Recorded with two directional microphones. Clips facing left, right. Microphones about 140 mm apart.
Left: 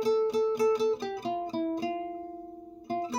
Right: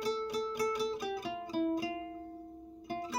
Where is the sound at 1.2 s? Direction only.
30° left (ahead or behind).